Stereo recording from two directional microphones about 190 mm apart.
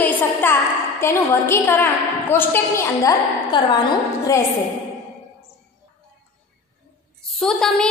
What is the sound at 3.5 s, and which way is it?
Speech, 25° left (ahead or behind).